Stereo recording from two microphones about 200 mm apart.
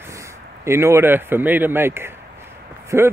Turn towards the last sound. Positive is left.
turn(degrees=-10)  # may be behind; listen again after turning